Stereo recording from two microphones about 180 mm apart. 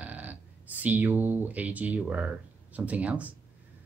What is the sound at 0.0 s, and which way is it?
Speech, 10° right (ahead or behind).